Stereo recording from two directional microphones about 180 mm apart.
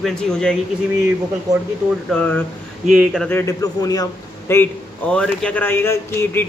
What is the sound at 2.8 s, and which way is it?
Speech, centre (ahead or behind).